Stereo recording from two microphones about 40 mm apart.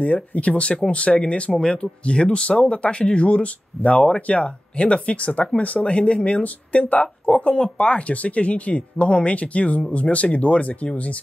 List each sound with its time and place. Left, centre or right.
0.0 s speech: left